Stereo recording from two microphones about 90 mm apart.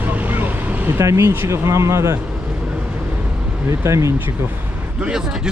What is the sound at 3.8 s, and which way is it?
Speech, 35° right (ahead or behind).